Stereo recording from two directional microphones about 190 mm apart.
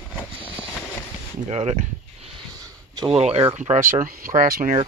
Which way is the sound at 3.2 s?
30° right (ahead or behind).